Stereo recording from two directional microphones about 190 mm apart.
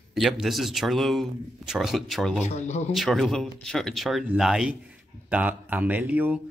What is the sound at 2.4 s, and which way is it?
Speech, 35° left (ahead or behind).